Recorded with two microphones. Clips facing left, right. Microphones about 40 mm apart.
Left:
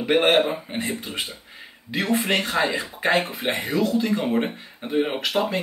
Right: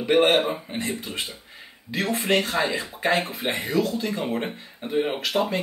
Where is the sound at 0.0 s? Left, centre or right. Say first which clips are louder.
Left 1 dB; centre.